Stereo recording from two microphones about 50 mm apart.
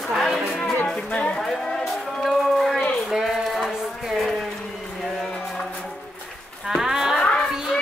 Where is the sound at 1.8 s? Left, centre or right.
Centre.